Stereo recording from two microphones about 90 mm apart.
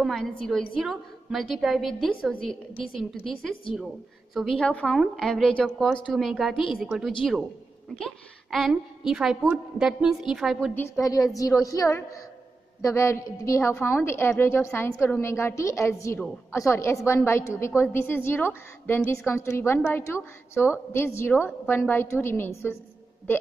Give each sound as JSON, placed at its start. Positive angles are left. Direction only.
{"t": 0.0, "sound": "a woman's voice", "side_deg": 5}
{"t": 2.7, "sound": "a woman's voice", "side_deg": 90}
{"t": 3.0, "sound": "a woman's voice", "side_deg": 0}
{"t": 4.6, "sound": "a woman's voice", "side_deg": 10}
{"t": 11.0, "sound": "a woman's voice", "side_deg": 40}